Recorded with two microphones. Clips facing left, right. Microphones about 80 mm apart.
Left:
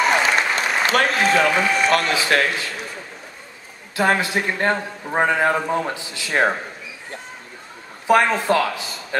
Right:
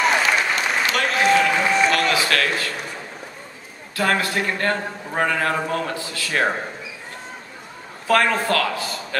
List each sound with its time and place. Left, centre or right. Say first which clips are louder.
0.0 s applause: left 1 dB; centre
0.8 s speech: left 1 dB; left
2.1 s a man's voice: left 1 dB; left
3.9 s a man's voice: left 2 dB; centre
8.1 s a man's voice: left 2 dB; centre